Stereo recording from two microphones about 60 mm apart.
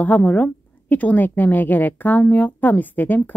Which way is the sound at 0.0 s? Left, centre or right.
Left.